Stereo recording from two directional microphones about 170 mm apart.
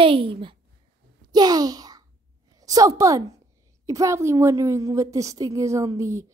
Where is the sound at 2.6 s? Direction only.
20° right (ahead or behind).